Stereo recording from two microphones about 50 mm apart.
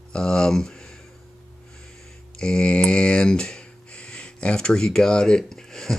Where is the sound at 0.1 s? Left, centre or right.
Centre.